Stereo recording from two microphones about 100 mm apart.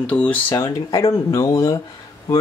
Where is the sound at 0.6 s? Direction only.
35° left (ahead or behind).